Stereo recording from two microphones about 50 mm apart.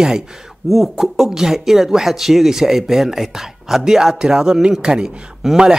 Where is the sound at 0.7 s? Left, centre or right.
Centre.